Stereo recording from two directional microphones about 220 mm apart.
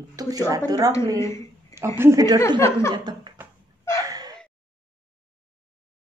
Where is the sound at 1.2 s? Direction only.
15° left (ahead or behind).